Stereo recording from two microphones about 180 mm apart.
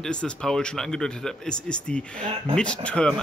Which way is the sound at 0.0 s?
5° left (ahead or behind).